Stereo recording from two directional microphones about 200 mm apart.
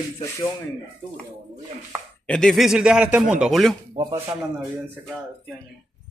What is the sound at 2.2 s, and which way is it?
A man's voice, 5° left (ahead or behind).